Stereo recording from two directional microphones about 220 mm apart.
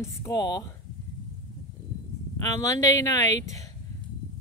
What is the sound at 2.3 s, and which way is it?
Speech, 15° left (ahead or behind).